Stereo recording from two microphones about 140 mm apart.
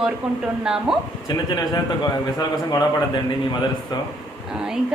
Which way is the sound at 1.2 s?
30° left (ahead or behind).